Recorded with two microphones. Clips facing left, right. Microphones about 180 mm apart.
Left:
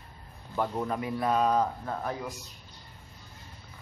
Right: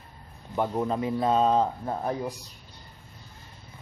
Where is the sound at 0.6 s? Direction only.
20° right (ahead or behind).